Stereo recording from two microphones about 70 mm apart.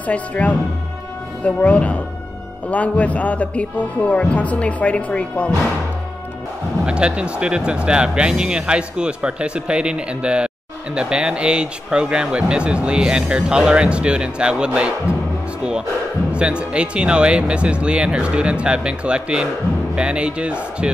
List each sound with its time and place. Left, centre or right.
0.0 s speech: centre
6.9 s speech: centre
16.3 s speech: centre